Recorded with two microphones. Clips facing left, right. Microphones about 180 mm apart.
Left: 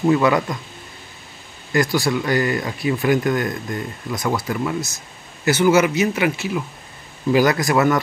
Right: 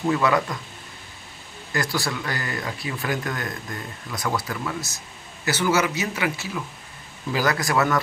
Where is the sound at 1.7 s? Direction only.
15° left (ahead or behind).